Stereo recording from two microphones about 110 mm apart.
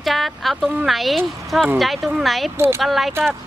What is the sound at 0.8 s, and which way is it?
Speech, centre (ahead or behind).